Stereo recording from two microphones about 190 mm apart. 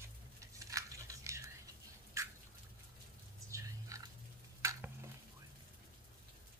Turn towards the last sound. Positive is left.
turn(degrees=-15)  # may be behind; listen again after turning